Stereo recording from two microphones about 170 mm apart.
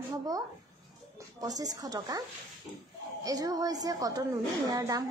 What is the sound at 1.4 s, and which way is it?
Speech, 20° right (ahead or behind).